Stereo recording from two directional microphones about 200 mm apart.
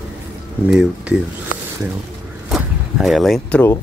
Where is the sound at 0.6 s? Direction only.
5° right (ahead or behind).